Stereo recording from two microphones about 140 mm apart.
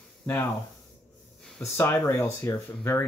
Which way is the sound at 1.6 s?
20° left (ahead or behind).